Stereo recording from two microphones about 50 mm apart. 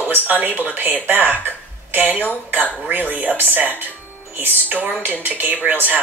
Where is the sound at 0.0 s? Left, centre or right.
Right.